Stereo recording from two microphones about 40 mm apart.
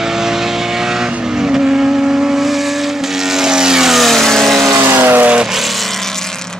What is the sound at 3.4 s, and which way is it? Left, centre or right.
Vehicle, centre.